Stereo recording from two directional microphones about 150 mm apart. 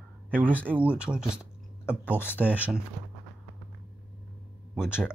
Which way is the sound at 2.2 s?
15° left (ahead or behind).